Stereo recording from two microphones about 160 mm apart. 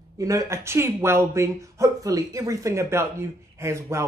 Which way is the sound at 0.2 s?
20° right (ahead or behind).